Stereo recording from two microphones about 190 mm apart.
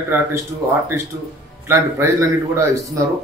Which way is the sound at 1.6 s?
15° right (ahead or behind).